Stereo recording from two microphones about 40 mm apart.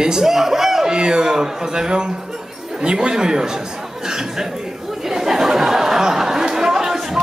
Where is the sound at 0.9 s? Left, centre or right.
Centre.